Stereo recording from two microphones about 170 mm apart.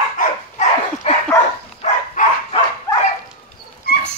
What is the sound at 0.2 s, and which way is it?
Dog, 45° left (ahead or behind).